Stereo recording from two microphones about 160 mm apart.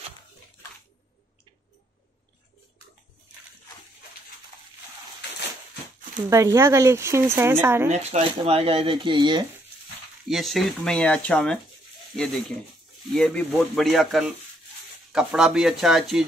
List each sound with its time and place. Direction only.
6.3 s speech: 15° right (ahead or behind)
7.9 s speech: 40° right (ahead or behind)
10.2 s speech: centre (ahead or behind)
13.1 s speech: 5° left (ahead or behind)